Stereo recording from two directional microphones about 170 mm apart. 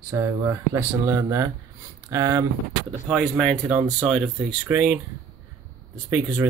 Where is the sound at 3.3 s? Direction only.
Centre (ahead or behind).